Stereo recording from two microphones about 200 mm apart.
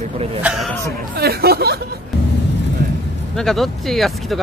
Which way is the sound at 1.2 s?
50° right (ahead or behind).